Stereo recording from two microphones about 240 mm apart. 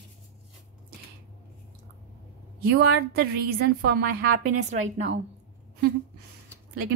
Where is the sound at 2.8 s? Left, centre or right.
Right.